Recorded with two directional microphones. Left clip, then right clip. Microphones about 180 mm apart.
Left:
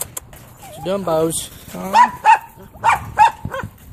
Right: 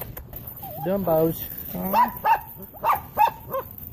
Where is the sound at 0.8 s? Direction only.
30° left (ahead or behind).